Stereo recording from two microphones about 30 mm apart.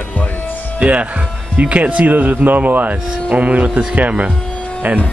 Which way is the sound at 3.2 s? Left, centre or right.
Right.